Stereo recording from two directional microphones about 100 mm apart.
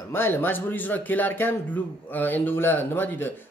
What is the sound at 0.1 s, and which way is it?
Speech, 20° left (ahead or behind).